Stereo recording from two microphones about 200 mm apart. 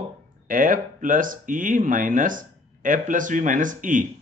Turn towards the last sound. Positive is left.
turn(degrees=-40)  # may be behind; listen again after turning